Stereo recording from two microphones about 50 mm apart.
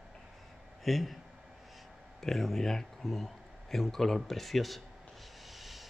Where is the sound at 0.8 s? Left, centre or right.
Centre.